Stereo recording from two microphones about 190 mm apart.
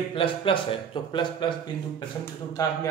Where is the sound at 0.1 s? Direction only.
30° left (ahead or behind).